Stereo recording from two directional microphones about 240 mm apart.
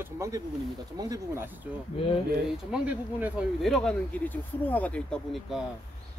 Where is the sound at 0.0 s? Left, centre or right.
Centre.